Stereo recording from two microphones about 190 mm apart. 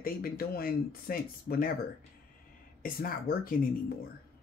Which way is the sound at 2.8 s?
50° left (ahead or behind).